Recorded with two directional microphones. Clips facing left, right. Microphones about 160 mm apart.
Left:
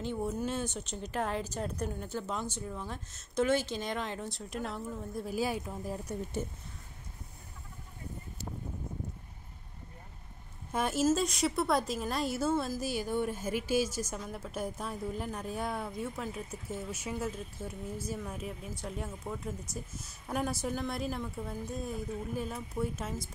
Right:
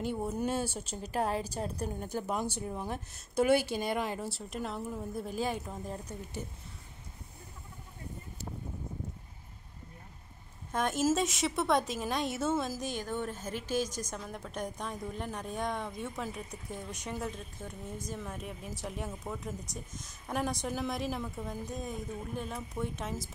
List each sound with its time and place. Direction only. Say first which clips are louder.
0.3 s a woman's voice: right 2 dB; 10° right (ahead or behind)
1.6 s a woman's voice: even; 30° right (ahead or behind)
2.0 s a woman's voice: right 3 dB; 10° right (ahead or behind)
10.7 s a woman's voice: left 1 dB; 5° left (ahead or behind)